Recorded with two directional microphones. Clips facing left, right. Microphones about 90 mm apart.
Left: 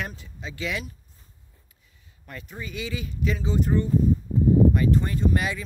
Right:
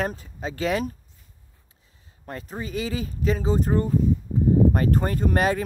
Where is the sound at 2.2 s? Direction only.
35° right (ahead or behind).